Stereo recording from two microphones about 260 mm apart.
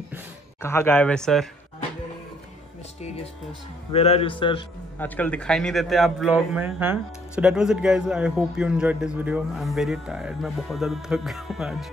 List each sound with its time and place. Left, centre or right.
0.6 s a man's voice: centre
3.9 s a man's voice: left
4.9 s a man's voice: centre